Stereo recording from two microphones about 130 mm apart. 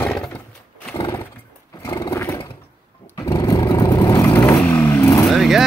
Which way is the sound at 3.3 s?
35° left (ahead or behind).